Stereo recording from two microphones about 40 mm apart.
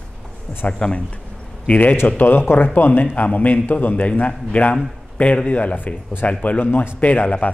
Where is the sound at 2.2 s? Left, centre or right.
Left.